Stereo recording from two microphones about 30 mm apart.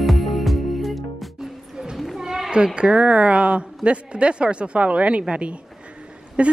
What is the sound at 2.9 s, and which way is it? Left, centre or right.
A woman's voice, right.